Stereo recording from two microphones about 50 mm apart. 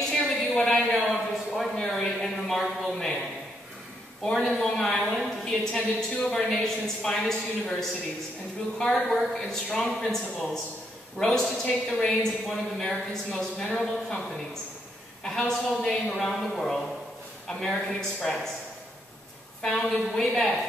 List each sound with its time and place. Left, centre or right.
0.6 s a woman's voice: centre
4.2 s a woman's voice: centre
5.0 s speech: centre
5.6 s a woman's voice: centre
15.2 s a woman's voice: centre
19.6 s a woman's voice: centre